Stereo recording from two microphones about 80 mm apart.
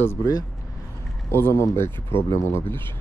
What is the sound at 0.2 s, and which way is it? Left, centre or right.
Speech, left.